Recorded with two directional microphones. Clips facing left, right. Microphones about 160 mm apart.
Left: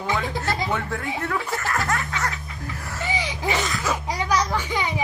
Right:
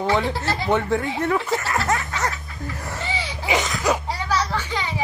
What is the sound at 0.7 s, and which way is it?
Speech, 20° right (ahead or behind).